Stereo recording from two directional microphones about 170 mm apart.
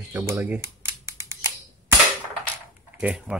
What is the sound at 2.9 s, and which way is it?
Speech, 5° right (ahead or behind).